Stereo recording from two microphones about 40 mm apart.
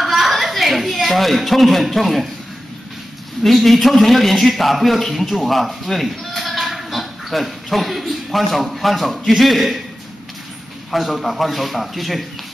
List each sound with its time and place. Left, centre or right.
0.0 s a sound: centre
3.4 s a man's voice: centre
10.9 s a man's voice: centre